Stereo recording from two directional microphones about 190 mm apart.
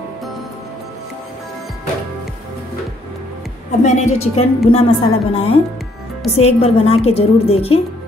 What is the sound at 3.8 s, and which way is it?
A woman's voice, 35° left (ahead or behind).